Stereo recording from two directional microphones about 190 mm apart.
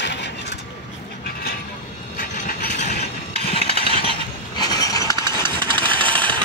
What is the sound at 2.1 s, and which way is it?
Vehicle, 40° left (ahead or behind).